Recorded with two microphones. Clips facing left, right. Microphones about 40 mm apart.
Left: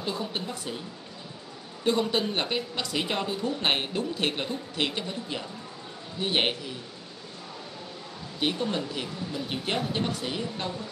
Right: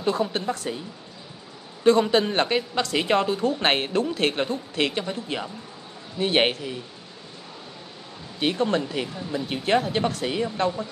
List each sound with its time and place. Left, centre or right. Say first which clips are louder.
0.3 s speech: right 6 dB; right
1.9 s speech: right 7 dB; right
8.4 s speech: right 5 dB; right